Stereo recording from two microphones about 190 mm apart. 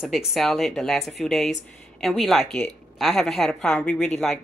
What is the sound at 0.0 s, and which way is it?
Speech, centre (ahead or behind).